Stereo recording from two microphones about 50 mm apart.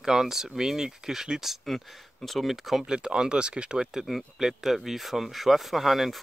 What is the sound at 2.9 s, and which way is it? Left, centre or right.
Speech, centre.